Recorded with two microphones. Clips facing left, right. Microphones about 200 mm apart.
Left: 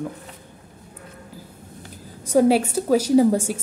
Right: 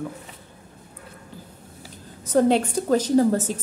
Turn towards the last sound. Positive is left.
turn(degrees=10)  # may be behind; listen again after turning